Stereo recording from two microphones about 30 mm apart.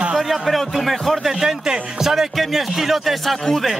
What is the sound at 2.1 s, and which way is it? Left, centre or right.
Speech, centre.